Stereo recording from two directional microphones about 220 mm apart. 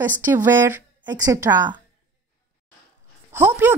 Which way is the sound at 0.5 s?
10° right (ahead or behind).